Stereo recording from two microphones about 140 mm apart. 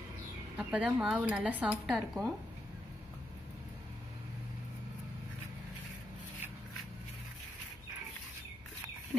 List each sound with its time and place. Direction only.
0.6 s speech: 5° right (ahead or behind)